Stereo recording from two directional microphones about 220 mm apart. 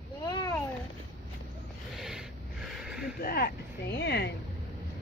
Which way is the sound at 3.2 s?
45° left (ahead or behind).